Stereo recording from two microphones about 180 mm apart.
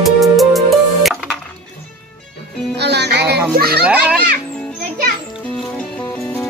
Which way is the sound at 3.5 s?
60° right (ahead or behind).